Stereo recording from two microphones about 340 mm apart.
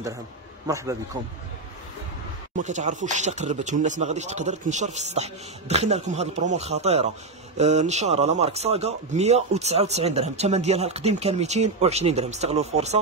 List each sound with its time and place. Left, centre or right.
0.7 s a man's voice: centre
2.5 s speech: right